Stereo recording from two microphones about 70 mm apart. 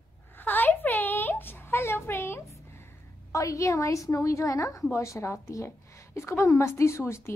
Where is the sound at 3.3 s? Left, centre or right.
Left.